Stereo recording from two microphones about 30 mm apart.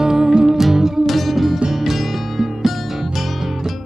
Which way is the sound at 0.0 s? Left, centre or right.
Right.